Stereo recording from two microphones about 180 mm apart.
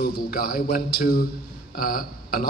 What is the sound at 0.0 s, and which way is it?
A man's voice, 55° left (ahead or behind).